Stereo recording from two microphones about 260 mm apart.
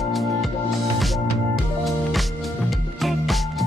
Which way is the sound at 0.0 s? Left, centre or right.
Centre.